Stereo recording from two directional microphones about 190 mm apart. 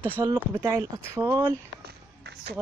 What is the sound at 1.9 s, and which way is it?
Music, 60° right (ahead or behind).